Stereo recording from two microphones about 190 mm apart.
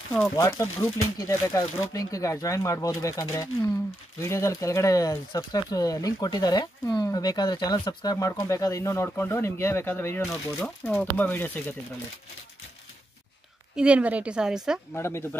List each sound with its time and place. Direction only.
0.4 s speech: 20° left (ahead or behind)
13.7 s a woman's voice: 5° right (ahead or behind)
15.0 s speech: 15° left (ahead or behind)